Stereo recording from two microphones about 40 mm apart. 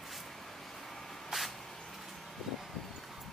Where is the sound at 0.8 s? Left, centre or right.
Centre.